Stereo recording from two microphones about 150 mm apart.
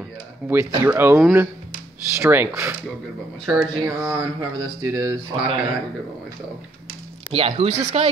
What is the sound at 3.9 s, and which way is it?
Speech, 20° right (ahead or behind).